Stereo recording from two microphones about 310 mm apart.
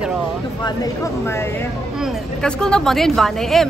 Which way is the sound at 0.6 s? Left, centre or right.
Centre.